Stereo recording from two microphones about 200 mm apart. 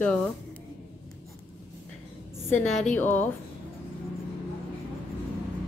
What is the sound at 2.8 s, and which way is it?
Speech, 10° left (ahead or behind).